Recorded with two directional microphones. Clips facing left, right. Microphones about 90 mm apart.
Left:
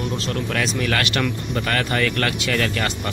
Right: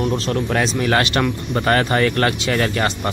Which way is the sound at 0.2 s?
30° right (ahead or behind).